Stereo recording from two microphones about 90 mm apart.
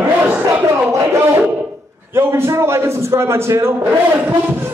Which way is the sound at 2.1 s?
25° right (ahead or behind).